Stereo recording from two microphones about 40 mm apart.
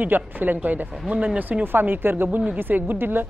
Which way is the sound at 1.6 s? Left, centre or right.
Right.